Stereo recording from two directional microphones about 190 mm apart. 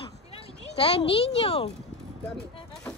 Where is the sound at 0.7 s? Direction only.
30° left (ahead or behind).